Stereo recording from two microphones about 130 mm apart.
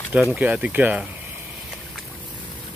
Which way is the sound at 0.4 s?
10° right (ahead or behind).